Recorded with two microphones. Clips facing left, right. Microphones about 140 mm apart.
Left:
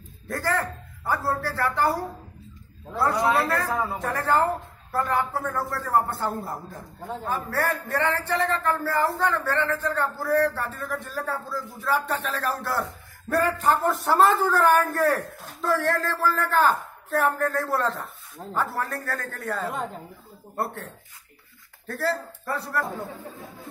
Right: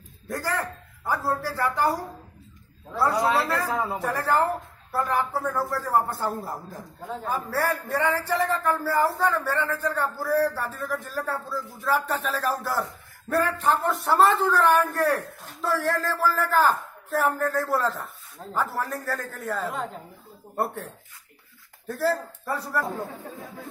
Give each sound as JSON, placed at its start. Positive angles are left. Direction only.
{"t": 0.3, "sound": "speech", "side_deg": -15}
{"t": 3.0, "sound": "a man's voice", "side_deg": -10}
{"t": 4.0, "sound": "a man's voice", "side_deg": -5}
{"t": 15.1, "sound": "a man's voice", "side_deg": -5}
{"t": 21.8, "sound": "a man's voice", "side_deg": -10}